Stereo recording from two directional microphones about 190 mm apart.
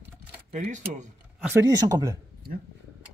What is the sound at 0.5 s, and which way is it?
Speech, 40° right (ahead or behind).